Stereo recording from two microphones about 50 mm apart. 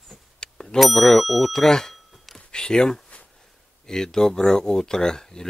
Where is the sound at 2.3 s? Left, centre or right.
Centre.